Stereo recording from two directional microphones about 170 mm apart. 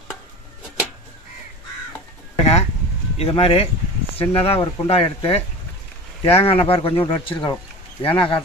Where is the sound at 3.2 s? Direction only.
35° left (ahead or behind).